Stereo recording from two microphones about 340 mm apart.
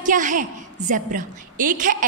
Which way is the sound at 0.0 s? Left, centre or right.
Right.